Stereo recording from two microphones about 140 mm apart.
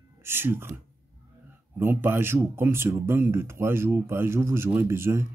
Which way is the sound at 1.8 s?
15° right (ahead or behind).